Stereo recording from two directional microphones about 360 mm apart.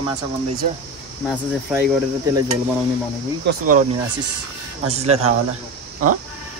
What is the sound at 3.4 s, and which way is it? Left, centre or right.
Speech, right.